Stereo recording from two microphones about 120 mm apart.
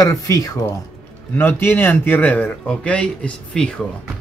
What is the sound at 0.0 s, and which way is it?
Speech, 30° left (ahead or behind).